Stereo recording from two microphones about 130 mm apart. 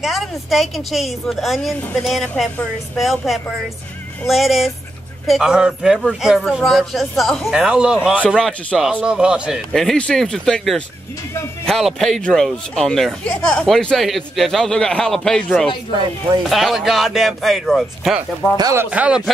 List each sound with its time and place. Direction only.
0.0 s speech: centre (ahead or behind)
8.4 s speech: 5° left (ahead or behind)
18.6 s speech: 25° right (ahead or behind)
18.9 s speech: 10° right (ahead or behind)